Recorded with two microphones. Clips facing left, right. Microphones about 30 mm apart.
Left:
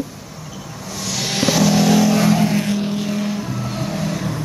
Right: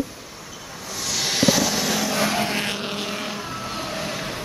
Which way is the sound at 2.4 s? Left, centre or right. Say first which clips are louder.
Left 5 dB; right.